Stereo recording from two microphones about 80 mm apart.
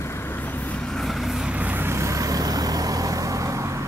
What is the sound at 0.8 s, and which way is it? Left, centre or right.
Vehicle, centre.